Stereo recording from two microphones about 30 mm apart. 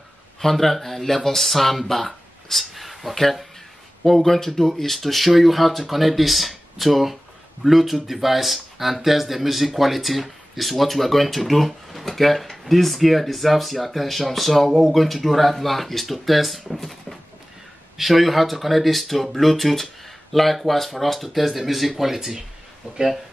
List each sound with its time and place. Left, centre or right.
0.4 s speech: centre
4.0 s speech: centre
16.7 s a sound: centre
17.9 s speech: centre